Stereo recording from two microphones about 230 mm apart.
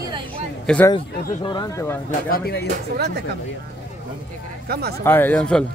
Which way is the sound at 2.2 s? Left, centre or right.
Left.